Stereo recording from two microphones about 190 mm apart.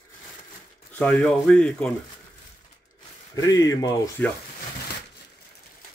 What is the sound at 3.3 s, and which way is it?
Speech, 20° left (ahead or behind).